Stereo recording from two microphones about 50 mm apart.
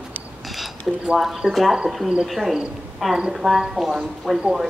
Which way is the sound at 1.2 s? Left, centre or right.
Centre.